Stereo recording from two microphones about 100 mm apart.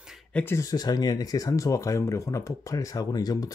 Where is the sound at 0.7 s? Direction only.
40° left (ahead or behind).